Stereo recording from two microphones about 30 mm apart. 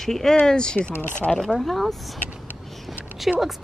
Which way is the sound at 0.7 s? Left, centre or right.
Left.